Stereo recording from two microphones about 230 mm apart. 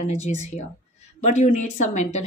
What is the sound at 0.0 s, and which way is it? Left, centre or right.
Speech, left.